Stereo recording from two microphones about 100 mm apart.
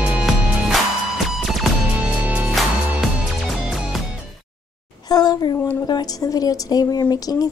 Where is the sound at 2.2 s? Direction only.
15° right (ahead or behind).